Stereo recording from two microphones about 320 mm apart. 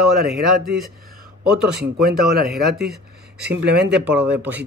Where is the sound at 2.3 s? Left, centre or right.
Right.